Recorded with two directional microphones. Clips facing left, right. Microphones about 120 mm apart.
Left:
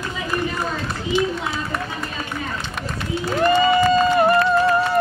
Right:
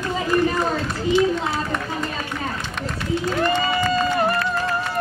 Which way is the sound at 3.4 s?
20° left (ahead or behind).